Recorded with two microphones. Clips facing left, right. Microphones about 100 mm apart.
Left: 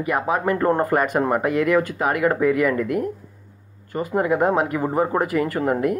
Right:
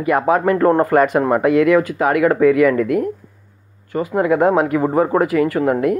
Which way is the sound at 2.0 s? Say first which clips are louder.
Right 8 dB; 25° left (ahead or behind).